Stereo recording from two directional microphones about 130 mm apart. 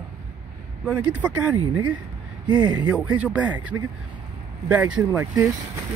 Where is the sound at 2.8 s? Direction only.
10° right (ahead or behind).